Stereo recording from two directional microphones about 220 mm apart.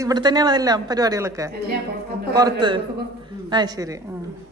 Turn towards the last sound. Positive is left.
turn(degrees=-15)  # may be behind; listen again after turning